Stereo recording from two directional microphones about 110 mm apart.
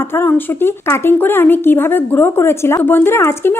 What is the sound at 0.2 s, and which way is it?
Speech, 20° left (ahead or behind).